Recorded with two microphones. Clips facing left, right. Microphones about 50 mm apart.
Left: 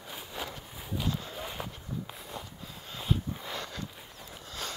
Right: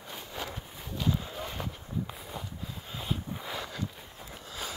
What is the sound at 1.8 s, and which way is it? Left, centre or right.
Walk, right.